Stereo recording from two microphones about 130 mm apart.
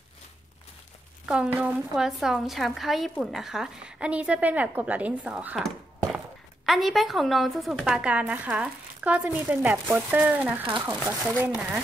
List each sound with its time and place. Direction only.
1.2 s a woman's voice: 5° right (ahead or behind)
10.7 s speech: 30° right (ahead or behind)
11.2 s a woman's voice: 10° right (ahead or behind)